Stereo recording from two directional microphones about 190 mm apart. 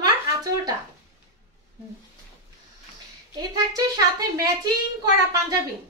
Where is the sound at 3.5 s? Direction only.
20° right (ahead or behind).